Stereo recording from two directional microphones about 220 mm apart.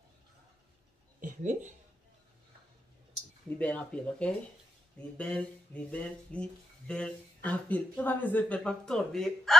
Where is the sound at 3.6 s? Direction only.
5° left (ahead or behind).